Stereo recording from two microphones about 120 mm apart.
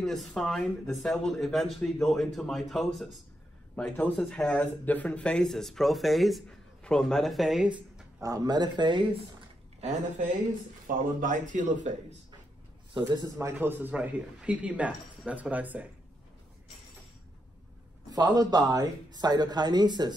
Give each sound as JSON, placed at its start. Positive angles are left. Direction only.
{"t": 0.0, "sound": "speech", "side_deg": 0}
{"t": 3.7, "sound": "speech", "side_deg": 15}
{"t": 8.2, "sound": "speech", "side_deg": -30}
{"t": 9.8, "sound": "speech", "side_deg": -75}
{"t": 11.2, "sound": "speech", "side_deg": -90}
{"t": 12.9, "sound": "a man's voice", "side_deg": -35}
{"t": 18.1, "sound": "speech", "side_deg": -30}